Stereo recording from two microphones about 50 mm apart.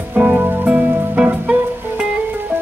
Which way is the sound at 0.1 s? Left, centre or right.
Right.